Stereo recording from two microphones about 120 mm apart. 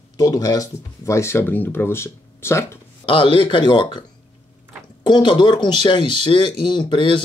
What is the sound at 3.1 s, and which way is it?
Speech, 45° left (ahead or behind).